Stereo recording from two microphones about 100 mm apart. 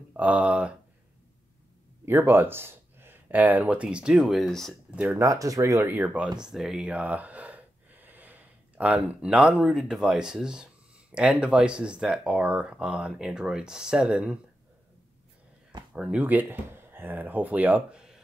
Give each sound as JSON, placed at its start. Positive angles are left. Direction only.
{"t": 0.1, "sound": "speech", "side_deg": -15}
{"t": 2.0, "sound": "speech", "side_deg": -20}
{"t": 5.0, "sound": "speech", "side_deg": -30}
{"t": 5.9, "sound": "speech", "side_deg": -15}
{"t": 6.4, "sound": "speech", "side_deg": -5}
{"t": 15.9, "sound": "speech", "side_deg": -10}